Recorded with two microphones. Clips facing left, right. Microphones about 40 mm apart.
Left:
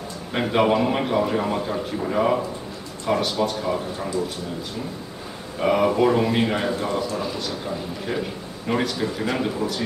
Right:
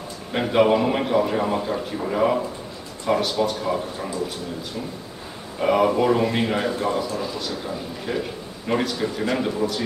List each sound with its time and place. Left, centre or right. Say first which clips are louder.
0.3 s a man's voice: right 2 dB; centre
5.6 s a man's voice: even; centre